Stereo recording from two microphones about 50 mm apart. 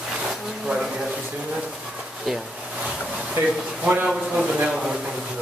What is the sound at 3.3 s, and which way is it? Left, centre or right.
Speech, right.